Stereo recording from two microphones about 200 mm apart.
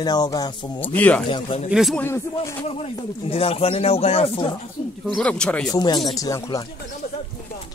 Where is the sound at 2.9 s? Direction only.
30° left (ahead or behind).